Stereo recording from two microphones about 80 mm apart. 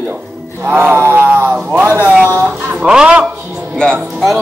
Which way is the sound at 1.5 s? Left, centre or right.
Centre.